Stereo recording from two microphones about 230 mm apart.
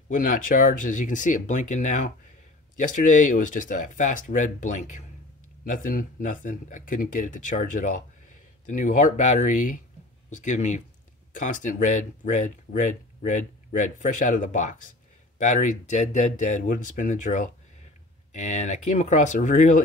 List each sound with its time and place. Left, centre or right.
0.1 s speech: left